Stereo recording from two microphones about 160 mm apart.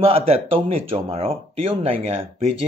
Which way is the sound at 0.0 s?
35° right (ahead or behind).